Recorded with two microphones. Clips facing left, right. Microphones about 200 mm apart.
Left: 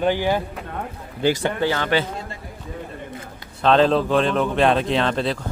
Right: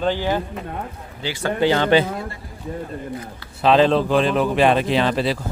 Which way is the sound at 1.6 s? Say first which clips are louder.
Right 6 dB; 25° right (ahead or behind).